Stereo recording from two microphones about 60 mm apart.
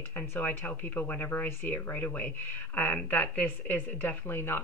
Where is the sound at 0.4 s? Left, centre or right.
Left.